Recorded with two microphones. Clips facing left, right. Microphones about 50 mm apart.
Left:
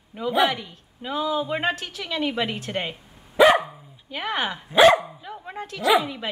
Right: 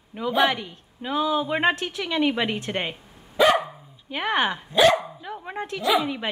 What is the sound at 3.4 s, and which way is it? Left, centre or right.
Dog, centre.